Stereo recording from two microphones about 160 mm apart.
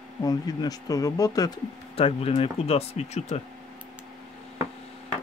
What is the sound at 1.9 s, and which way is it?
Speech, 35° left (ahead or behind).